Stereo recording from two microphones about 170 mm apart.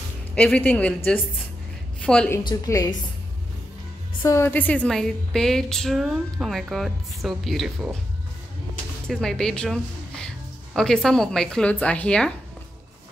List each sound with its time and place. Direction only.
0.3 s a woman's voice: 5° left (ahead or behind)
2.4 s a woman's voice: 20° left (ahead or behind)
4.2 s a woman's voice: 15° left (ahead or behind); by 8.0 s centre (ahead or behind)
9.0 s a woman's voice: 5° left (ahead or behind)